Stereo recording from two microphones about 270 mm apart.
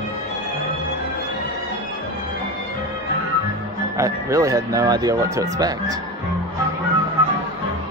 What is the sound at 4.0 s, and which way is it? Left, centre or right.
Speech, centre.